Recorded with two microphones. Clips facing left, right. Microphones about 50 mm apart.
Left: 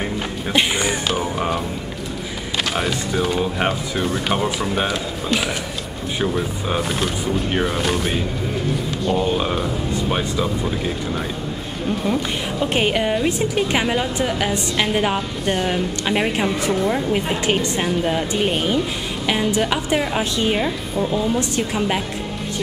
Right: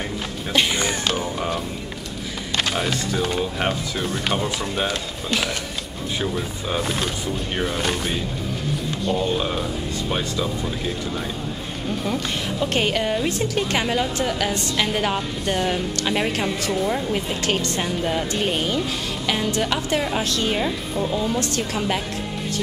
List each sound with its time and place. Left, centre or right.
0.0 s music: centre
2.5 s a woman's voice: centre
9.2 s a woman's voice: centre
12.0 s a woman's voice: centre